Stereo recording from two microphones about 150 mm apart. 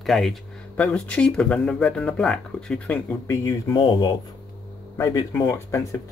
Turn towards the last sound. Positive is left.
turn(degrees=20)  # may be behind; listen again after turning